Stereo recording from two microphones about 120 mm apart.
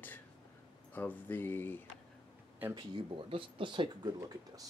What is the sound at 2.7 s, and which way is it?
Speech, 45° right (ahead or behind).